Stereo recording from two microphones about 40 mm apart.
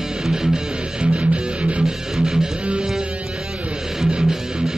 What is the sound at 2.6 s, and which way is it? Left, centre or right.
Music, right.